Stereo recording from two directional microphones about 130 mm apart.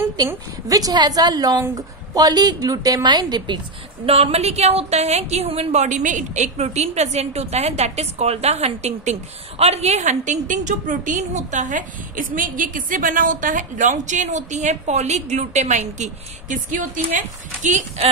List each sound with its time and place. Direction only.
0.3 s a woman's voice: 25° right (ahead or behind)
4.0 s a woman's voice: 50° right (ahead or behind); by 17.0 s 85° right
17.6 s speech: 65° right (ahead or behind)